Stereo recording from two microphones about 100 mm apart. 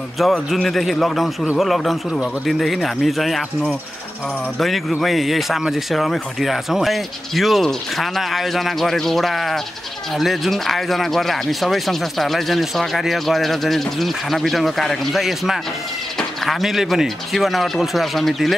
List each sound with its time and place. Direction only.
0.2 s speech: centre (ahead or behind)